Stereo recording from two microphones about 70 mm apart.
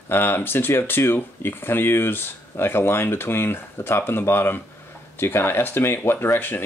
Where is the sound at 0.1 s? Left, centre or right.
Left.